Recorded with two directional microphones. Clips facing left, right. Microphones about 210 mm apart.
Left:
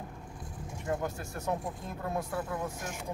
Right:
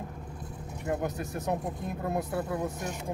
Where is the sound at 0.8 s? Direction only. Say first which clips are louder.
Right 3 dB; 20° right (ahead or behind).